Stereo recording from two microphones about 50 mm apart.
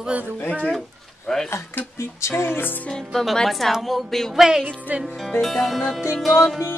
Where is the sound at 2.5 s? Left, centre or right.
Left.